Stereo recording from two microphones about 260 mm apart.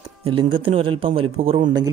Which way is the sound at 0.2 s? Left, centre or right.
Centre.